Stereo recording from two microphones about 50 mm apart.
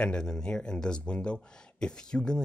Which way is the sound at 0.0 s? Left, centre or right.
Centre.